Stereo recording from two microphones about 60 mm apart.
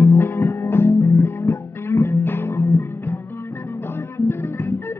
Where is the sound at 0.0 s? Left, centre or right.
Left.